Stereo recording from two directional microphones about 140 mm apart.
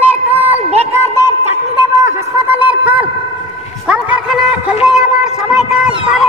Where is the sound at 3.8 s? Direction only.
5° right (ahead or behind).